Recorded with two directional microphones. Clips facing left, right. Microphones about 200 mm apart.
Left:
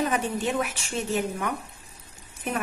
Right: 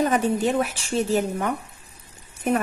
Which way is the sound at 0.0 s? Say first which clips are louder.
Right 5 dB; 40° right (ahead or behind).